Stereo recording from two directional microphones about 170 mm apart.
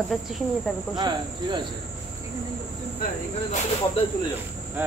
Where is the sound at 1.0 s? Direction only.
25° right (ahead or behind).